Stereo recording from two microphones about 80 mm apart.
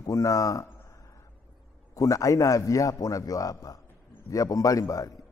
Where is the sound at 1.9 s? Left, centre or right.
Left.